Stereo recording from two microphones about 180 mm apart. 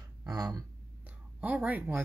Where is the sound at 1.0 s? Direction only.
10° right (ahead or behind).